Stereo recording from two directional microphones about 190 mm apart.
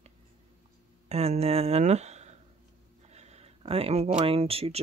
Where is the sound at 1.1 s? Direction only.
35° right (ahead or behind).